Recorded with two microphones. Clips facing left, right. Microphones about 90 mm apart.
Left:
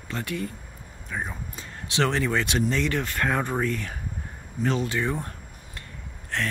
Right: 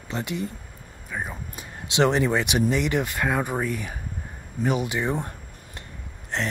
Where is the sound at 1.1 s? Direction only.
5° right (ahead or behind).